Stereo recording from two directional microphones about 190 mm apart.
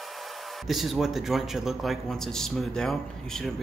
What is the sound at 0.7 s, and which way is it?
A man's voice, centre (ahead or behind).